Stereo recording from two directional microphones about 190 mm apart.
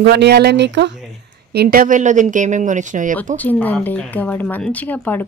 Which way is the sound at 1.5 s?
50° right (ahead or behind).